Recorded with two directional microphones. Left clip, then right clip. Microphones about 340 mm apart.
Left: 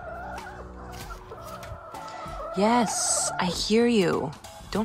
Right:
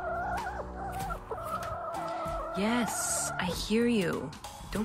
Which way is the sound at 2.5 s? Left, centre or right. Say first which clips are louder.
Left 10 dB; centre.